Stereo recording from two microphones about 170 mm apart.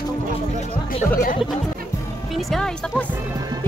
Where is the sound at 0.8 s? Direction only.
55° left (ahead or behind).